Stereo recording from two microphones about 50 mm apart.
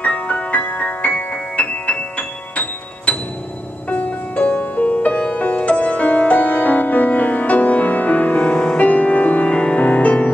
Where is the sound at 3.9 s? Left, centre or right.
Left.